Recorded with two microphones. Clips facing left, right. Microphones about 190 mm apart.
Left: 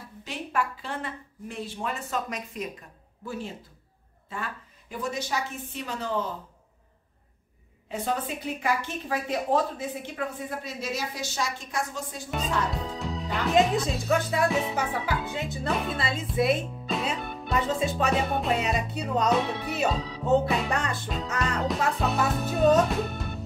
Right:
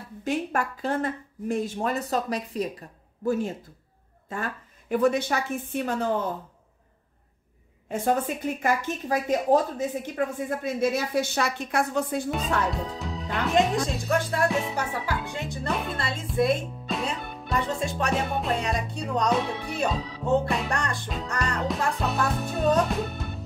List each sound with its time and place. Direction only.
0.2 s speech: 45° right (ahead or behind)
3.3 s speech: 45° right (ahead or behind)
7.9 s a woman's voice: 50° right (ahead or behind)
12.7 s music: centre (ahead or behind)
13.5 s speech: centre (ahead or behind)